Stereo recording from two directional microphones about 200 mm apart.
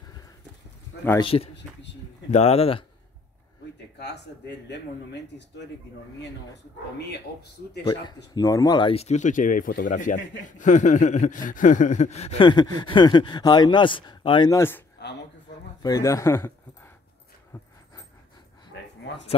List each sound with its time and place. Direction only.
1.2 s speech: 30° left (ahead or behind)
8.4 s speech: 20° left (ahead or behind)
15.0 s a sound: 55° left (ahead or behind)
15.8 s a man's voice: 15° left (ahead or behind)